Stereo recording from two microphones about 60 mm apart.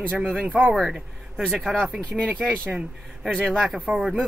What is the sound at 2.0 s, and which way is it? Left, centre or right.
Speech, centre.